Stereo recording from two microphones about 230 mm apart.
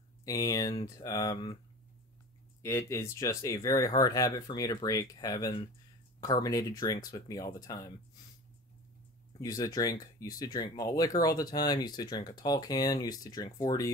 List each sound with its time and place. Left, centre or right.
0.2 s speech: centre
2.6 s speech: centre
9.4 s speech: centre